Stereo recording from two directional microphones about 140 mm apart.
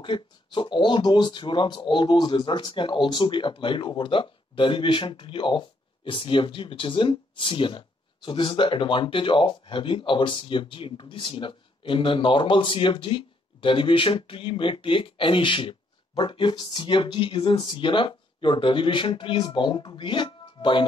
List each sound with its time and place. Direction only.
0.0 s speech: 35° left (ahead or behind)